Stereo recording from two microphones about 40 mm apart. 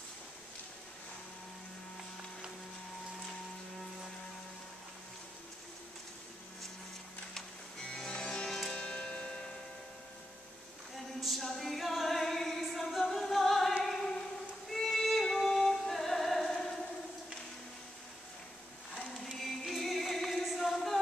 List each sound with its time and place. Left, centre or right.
8.1 s music: left
11.1 s music: centre
19.1 s music: centre